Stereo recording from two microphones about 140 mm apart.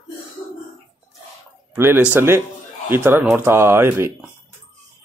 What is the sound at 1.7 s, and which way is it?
Speech, 15° right (ahead or behind).